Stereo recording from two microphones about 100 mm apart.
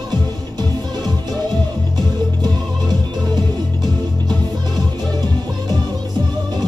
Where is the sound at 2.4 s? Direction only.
45° right (ahead or behind).